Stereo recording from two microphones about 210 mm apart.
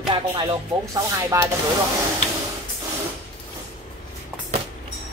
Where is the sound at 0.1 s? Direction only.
20° right (ahead or behind).